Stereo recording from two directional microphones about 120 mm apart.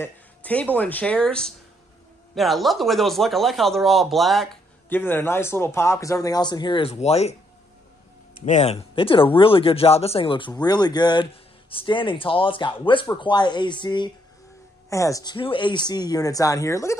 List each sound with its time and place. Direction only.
0.0 s a sound: 10° left (ahead or behind)
0.7 s speech: 15° left (ahead or behind)
4.8 s speech: 15° left (ahead or behind); by 7.3 s 60° left (ahead or behind)
8.5 s speech: 75° left (ahead or behind)
8.7 s speech: 50° left (ahead or behind)
14.9 s speech: 25° left (ahead or behind)
15.3 s speech: 45° left (ahead or behind); by 16.9 s 25° left (ahead or behind)